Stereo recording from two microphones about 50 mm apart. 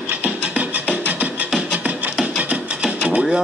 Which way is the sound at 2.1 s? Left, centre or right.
Right.